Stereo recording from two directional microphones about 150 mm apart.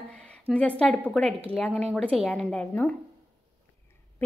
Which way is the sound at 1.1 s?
5° left (ahead or behind).